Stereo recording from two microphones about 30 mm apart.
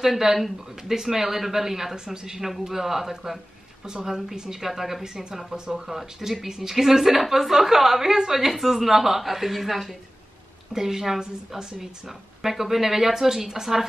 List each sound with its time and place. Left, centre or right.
0.0 s a woman's voice: centre
5.0 s speech: right
5.9 s a woman's voice: centre
10.7 s a woman's voice: centre